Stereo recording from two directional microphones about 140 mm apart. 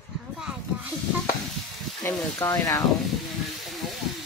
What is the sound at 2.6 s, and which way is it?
Speech, 25° left (ahead or behind).